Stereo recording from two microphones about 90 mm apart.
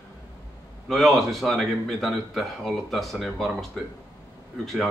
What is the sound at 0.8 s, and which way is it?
A man's voice, centre (ahead or behind).